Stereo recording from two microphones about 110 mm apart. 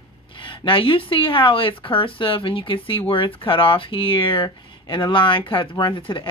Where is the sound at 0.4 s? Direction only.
50° left (ahead or behind).